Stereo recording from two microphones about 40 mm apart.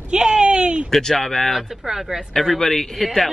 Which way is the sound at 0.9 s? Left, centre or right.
Centre.